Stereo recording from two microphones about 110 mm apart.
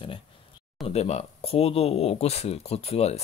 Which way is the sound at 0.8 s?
75° left (ahead or behind).